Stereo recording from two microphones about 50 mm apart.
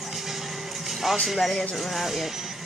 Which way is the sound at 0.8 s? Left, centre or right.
Centre.